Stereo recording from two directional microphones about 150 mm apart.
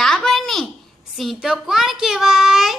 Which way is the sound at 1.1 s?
Centre (ahead or behind).